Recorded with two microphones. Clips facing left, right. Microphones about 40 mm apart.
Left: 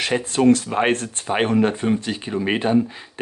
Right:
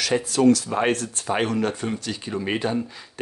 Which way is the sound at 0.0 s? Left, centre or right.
Left.